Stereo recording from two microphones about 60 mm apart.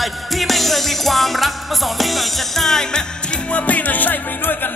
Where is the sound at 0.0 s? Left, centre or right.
Centre.